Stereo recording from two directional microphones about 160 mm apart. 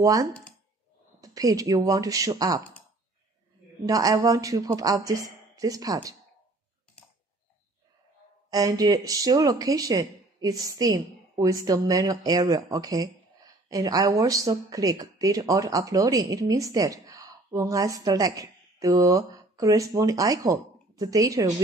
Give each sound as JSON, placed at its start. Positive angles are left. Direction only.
{"t": 0.0, "sound": "speech", "side_deg": -20}
{"t": 3.8, "sound": "speech", "side_deg": -20}
{"t": 8.5, "sound": "speech", "side_deg": -20}